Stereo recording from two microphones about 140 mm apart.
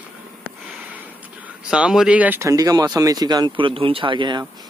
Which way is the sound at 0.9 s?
10° right (ahead or behind).